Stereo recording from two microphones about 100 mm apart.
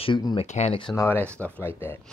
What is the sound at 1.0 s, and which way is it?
Speech, 25° left (ahead or behind).